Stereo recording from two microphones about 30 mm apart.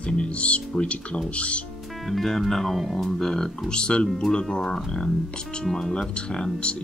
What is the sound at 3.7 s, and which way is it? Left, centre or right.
Speech, left.